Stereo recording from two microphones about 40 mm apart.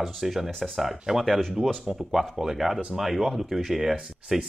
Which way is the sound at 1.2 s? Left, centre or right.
Centre.